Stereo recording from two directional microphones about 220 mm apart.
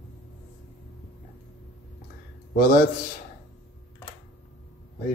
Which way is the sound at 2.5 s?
40° left (ahead or behind).